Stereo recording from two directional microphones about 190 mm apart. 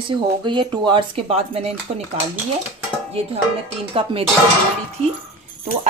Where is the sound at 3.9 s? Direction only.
30° right (ahead or behind).